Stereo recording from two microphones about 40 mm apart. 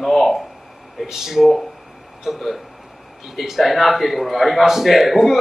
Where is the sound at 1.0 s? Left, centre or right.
Centre.